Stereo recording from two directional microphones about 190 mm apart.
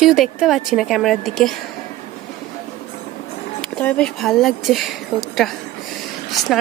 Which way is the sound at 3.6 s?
5° left (ahead or behind).